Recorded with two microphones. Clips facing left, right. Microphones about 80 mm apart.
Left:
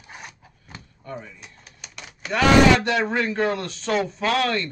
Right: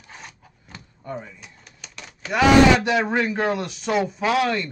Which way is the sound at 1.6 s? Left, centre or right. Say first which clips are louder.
Even; centre.